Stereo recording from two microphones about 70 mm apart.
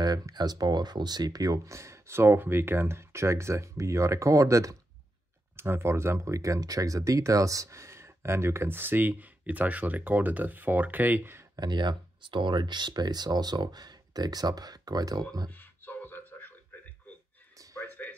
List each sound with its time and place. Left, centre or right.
0.0 s speech: right
1.7 s speech: right
5.6 s speech: right
11.5 s speech: right
15.5 s beatboxing: left
17.7 s a sound: left